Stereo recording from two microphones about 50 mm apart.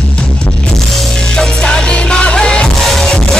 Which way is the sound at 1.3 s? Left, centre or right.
Centre.